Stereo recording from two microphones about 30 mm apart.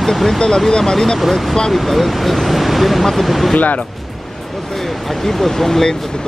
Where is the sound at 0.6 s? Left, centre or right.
Centre.